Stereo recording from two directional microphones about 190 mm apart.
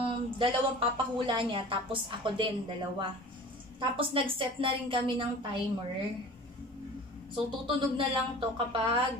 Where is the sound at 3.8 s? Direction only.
30° right (ahead or behind).